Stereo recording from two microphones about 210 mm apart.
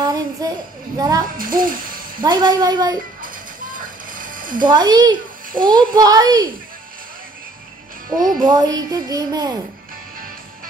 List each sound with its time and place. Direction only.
0.0 s child singing: 15° right (ahead or behind)
0.9 s speech: 15° right (ahead or behind)
1.3 s speech: 40° right (ahead or behind)
2.2 s speech: 20° right (ahead or behind)
3.2 s music: 40° right (ahead or behind)
4.6 s speech: 20° right (ahead or behind)
8.5 s speech: 20° right (ahead or behind)